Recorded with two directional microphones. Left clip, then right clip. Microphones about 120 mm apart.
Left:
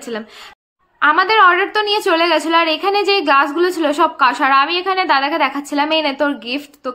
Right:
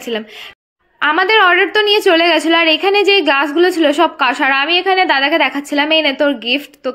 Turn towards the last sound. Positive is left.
turn(degrees=-25)  # may be behind; listen again after turning